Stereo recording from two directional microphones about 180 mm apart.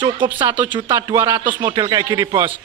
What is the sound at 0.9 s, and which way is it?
A man's voice, 15° right (ahead or behind).